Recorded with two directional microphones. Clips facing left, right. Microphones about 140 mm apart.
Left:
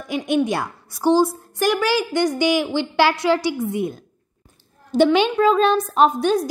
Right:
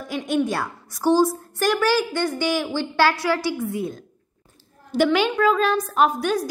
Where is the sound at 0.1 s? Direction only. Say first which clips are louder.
Left 3 dB; 15° left (ahead or behind).